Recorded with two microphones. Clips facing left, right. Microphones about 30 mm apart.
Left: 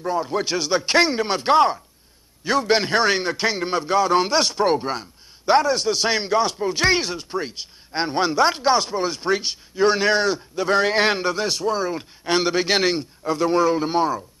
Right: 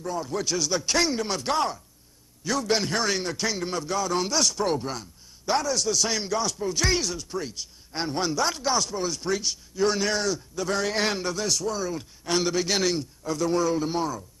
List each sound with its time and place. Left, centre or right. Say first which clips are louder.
0.0 s a man's voice: left 6 dB; left